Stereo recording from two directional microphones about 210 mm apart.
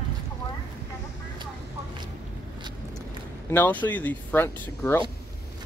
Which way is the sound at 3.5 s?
10° left (ahead or behind).